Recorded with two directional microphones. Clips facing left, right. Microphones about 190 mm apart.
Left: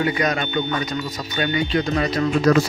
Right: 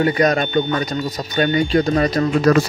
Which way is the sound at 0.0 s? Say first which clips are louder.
Right 5 dB; 40° right (ahead or behind).